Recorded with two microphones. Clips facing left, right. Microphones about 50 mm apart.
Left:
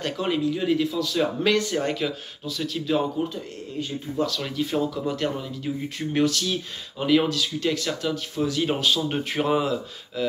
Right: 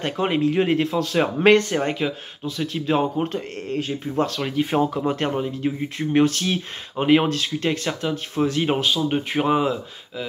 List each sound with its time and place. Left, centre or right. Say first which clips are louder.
0.0 s speech: right 3 dB; right
0.4 s speech: right 4 dB; right
1.9 s speech: right 2 dB; right
3.3 s speech: right 6 dB; right
4.4 s speech: right 4 dB; right
8.9 s speech: right 3 dB; centre